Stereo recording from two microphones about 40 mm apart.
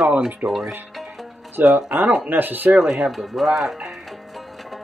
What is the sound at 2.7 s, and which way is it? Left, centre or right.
Speech, centre.